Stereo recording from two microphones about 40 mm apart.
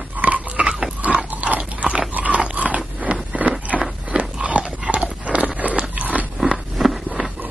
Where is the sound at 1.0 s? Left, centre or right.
Right.